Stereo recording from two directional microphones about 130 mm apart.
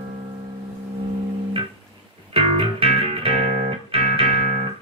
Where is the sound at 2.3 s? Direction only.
45° right (ahead or behind); by 4.6 s 60° right (ahead or behind).